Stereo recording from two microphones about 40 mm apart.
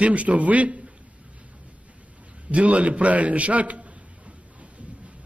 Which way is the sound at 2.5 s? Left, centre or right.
Right.